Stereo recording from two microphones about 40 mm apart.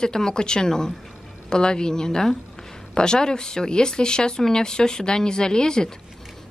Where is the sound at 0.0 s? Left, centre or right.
Centre.